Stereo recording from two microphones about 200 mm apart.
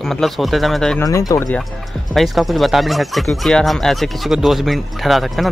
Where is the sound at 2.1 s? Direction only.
Centre (ahead or behind).